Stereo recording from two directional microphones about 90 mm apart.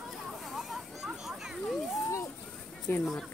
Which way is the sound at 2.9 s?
20° left (ahead or behind).